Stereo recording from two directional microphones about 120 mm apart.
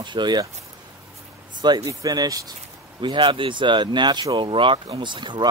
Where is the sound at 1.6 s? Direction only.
35° right (ahead or behind).